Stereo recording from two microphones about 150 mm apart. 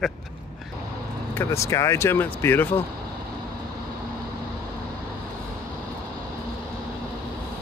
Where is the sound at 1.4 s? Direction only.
20° left (ahead or behind).